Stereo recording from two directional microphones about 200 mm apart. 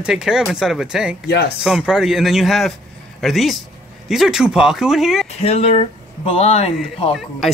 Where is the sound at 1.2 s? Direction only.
55° left (ahead or behind).